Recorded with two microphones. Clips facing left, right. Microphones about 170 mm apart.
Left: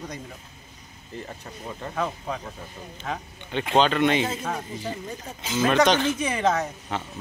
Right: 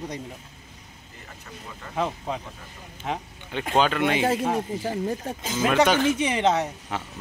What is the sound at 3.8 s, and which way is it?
Speech, 5° right (ahead or behind).